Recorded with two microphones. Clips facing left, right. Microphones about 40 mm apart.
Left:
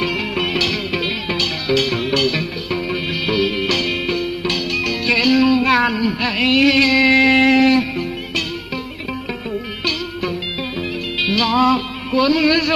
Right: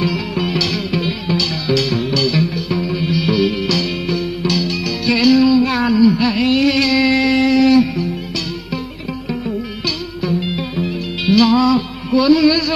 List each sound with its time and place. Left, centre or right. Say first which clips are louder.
0.0 s music: right 1 dB; left
7.1 s music: left 2 dB; left
10.8 s music: even; left
11.5 s music: right 1 dB; left